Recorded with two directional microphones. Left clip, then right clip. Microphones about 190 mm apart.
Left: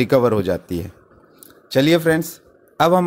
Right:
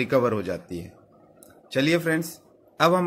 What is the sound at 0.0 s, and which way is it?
A man's voice, 45° left (ahead or behind).